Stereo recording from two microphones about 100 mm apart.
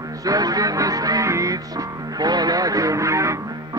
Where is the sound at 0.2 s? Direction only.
35° right (ahead or behind).